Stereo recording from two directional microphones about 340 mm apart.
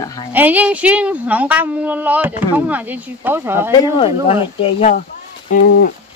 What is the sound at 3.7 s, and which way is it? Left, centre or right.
Speech, centre.